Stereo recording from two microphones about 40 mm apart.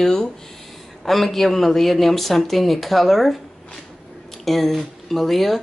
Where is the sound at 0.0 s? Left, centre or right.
Centre.